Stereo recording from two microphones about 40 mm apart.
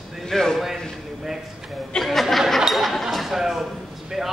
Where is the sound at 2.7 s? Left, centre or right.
Centre.